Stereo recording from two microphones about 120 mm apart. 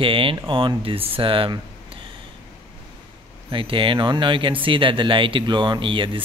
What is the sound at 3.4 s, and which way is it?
Speech, 45° right (ahead or behind).